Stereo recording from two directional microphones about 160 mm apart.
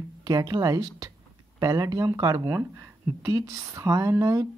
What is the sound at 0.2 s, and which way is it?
Speech, 25° right (ahead or behind).